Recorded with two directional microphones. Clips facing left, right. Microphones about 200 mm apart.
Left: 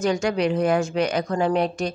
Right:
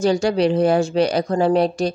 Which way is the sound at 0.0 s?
35° right (ahead or behind).